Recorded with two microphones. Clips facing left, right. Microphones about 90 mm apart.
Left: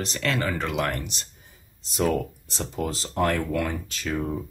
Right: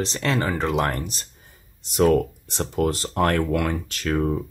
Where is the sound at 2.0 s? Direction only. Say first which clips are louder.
Right 6 dB; 55° right (ahead or behind).